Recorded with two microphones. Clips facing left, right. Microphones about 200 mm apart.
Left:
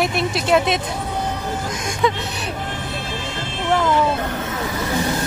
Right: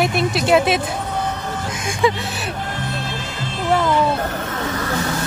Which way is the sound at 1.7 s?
5° right (ahead or behind).